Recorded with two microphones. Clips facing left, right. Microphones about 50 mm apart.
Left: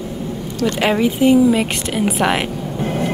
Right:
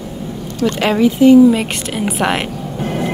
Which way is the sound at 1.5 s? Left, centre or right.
Centre.